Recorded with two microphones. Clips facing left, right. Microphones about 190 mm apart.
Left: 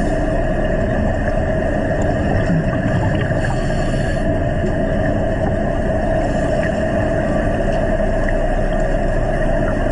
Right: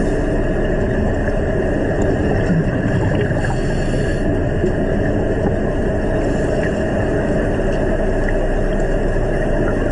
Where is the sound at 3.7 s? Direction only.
25° left (ahead or behind).